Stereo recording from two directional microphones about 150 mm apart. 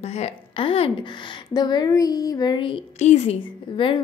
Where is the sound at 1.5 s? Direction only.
30° left (ahead or behind).